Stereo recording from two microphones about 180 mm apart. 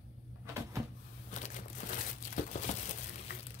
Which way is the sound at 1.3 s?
40° left (ahead or behind).